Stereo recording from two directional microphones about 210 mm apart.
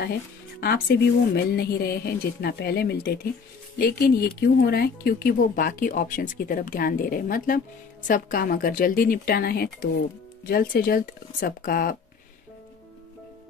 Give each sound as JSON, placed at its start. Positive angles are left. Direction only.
{"t": 0.6, "sound": "speech", "side_deg": 50}